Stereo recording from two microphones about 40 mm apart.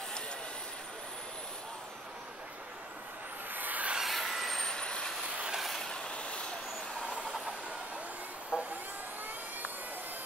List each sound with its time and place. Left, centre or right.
3.5 s a sound: right
4.0 s vehicle: centre
4.6 s vehicle: centre
5.7 s vehicle: centre
6.0 s vehicle: left
7.2 s vehicle: centre
8.5 s vehicle: right